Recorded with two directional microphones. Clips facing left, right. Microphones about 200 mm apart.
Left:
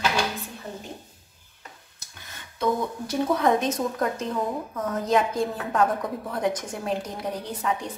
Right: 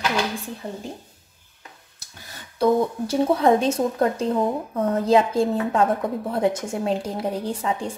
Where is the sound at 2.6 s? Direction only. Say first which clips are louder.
Right 6 dB; 35° right (ahead or behind).